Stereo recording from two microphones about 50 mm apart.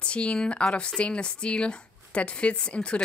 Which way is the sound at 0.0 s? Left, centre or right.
Left.